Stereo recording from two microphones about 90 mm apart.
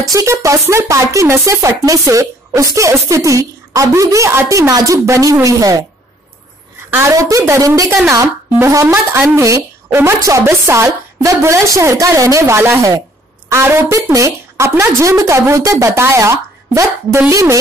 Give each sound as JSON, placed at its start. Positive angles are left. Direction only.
{"t": 0.1, "sound": "speech", "side_deg": -35}
{"t": 7.0, "sound": "speech", "side_deg": -35}
{"t": 8.8, "sound": "speech", "side_deg": -20}